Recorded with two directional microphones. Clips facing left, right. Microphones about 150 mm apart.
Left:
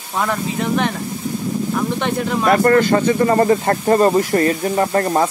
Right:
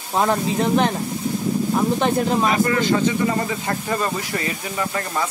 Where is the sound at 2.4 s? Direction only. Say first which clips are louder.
Left 6 dB; 55° left (ahead or behind).